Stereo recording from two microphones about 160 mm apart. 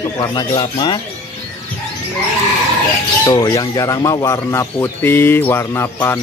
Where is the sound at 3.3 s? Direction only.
25° left (ahead or behind).